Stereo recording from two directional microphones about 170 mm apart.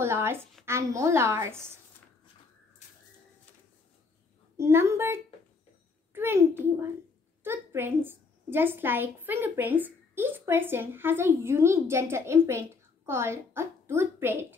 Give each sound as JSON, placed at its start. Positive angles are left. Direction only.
{"t": 0.0, "sound": "a woman's voice", "side_deg": -15}
{"t": 4.6, "sound": "a woman's voice", "side_deg": -15}